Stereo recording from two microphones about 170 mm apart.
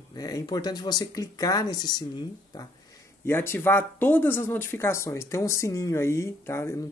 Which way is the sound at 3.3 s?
15° left (ahead or behind).